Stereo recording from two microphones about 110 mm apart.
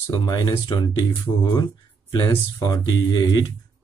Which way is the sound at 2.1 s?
35° left (ahead or behind).